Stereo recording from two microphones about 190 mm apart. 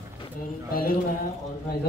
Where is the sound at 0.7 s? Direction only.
50° left (ahead or behind).